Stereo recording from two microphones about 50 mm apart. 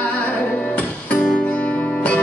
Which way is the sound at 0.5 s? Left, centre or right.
Left.